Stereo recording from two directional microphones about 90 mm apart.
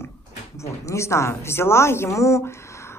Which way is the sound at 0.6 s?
35° left (ahead or behind).